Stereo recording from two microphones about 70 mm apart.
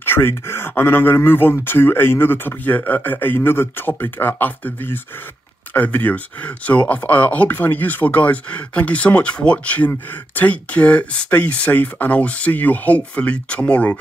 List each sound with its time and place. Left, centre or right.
0.0 s speech: left